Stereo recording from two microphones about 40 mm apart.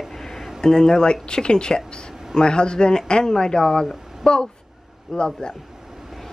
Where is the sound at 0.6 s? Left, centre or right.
Centre.